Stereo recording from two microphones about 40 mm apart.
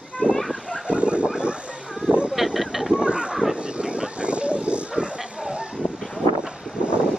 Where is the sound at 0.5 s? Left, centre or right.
Right.